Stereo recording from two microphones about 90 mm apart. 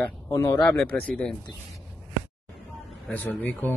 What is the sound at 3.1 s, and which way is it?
Speech, 20° left (ahead or behind).